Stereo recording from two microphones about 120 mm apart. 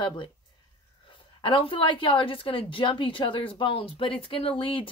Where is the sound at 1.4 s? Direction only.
45° left (ahead or behind).